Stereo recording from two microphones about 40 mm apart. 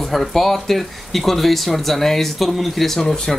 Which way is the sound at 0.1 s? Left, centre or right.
Centre.